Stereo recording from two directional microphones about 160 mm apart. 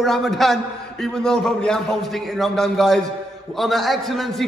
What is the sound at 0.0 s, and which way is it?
A man's voice, centre (ahead or behind).